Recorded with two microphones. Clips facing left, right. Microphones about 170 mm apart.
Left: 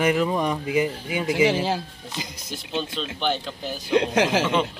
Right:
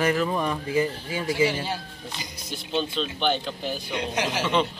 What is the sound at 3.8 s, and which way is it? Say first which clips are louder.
Speech: left 10 dB; 90° left.